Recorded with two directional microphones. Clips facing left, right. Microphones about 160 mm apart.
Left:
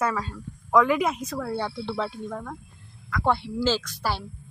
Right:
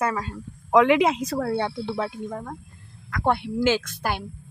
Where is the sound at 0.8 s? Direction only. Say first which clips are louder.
Right 4 dB; 85° right.